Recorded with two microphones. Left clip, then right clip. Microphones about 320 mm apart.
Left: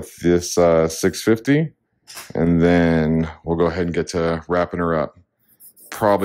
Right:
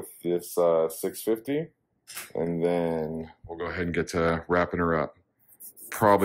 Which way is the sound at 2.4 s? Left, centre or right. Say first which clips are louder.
Left 10 dB; left.